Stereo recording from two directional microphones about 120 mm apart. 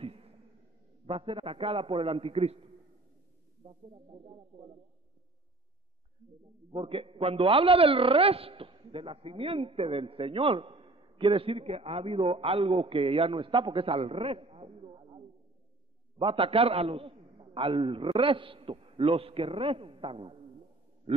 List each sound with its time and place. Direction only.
0.0 s a sound: 55° right (ahead or behind)
1.0 s a man's voice: 50° right (ahead or behind)
3.6 s a man's voice: 45° right (ahead or behind)
6.7 s a man's voice: 50° right (ahead or behind)